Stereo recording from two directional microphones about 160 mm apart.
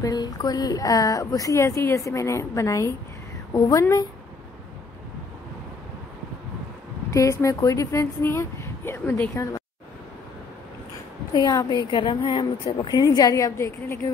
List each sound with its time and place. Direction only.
0.0 s a woman's voice: 25° left (ahead or behind)
7.1 s a woman's voice: 20° left (ahead or behind)
11.3 s a woman's voice: 25° left (ahead or behind)